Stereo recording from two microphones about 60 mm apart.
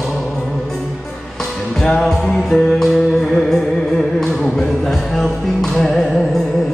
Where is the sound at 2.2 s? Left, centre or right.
Centre.